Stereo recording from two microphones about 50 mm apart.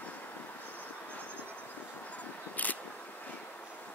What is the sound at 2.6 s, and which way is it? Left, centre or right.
Single-lens reflex camera, left.